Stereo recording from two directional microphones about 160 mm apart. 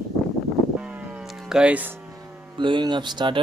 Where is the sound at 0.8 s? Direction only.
5° right (ahead or behind).